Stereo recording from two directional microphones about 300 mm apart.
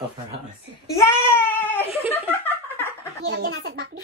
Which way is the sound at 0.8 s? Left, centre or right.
Centre.